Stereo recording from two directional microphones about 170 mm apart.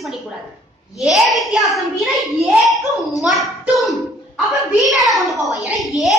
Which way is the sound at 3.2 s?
Centre (ahead or behind).